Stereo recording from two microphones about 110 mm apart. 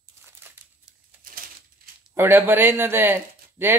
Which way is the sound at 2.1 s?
20° right (ahead or behind).